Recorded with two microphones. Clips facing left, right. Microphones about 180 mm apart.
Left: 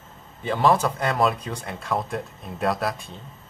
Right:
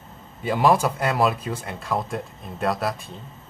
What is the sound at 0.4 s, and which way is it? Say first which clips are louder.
A man's voice: right 1 dB; 10° right (ahead or behind).